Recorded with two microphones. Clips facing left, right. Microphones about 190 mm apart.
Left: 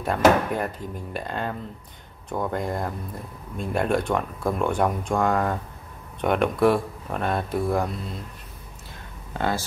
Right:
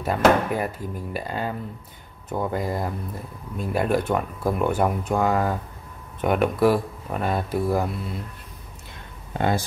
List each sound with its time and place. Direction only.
0.0 s speech: 5° right (ahead or behind)
9.3 s speech: 20° right (ahead or behind)